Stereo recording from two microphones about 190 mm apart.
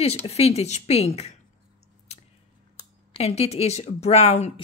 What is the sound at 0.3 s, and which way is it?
Speech, 35° left (ahead or behind).